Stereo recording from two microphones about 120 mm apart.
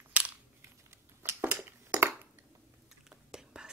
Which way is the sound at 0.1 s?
10° right (ahead or behind).